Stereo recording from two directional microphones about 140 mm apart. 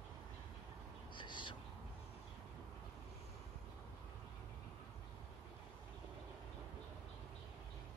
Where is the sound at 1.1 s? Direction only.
35° left (ahead or behind).